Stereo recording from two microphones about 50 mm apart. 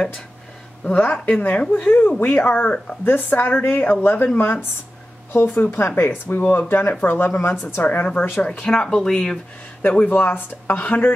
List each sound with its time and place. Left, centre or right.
0.8 s speech: left
7.8 s speech: left
8.4 s speech: centre
9.8 s speech: left